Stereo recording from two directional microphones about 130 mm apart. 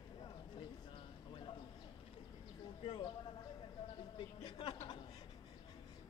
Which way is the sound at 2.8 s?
45° left (ahead or behind).